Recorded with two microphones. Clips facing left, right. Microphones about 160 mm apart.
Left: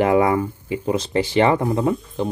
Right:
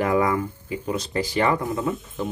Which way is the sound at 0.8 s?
30° left (ahead or behind).